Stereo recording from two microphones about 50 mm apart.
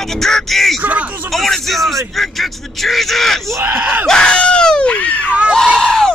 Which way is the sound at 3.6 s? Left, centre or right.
Right.